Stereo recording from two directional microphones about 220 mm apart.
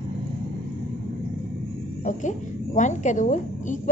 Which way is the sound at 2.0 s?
35° left (ahead or behind).